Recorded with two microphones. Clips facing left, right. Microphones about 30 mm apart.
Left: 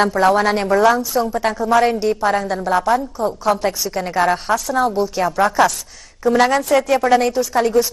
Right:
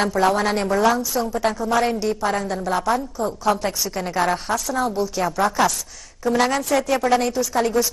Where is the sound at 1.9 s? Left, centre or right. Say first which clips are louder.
Left 5 dB; centre.